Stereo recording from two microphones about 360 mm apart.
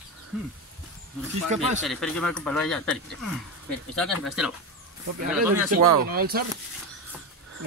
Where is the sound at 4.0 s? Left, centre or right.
Centre.